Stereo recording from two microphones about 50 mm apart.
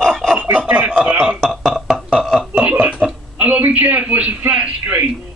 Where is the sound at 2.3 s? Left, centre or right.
Right.